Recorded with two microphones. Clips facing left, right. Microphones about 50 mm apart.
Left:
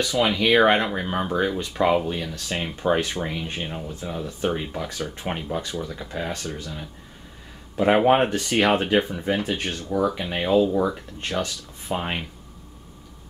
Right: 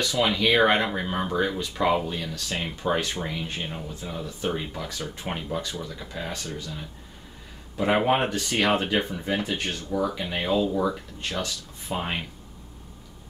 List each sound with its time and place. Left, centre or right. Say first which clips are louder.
0.0 s speech: left 2 dB; centre
9.8 s speech: left 4 dB; centre